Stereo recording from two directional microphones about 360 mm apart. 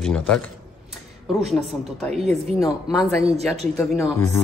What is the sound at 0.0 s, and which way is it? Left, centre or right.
Speech, centre.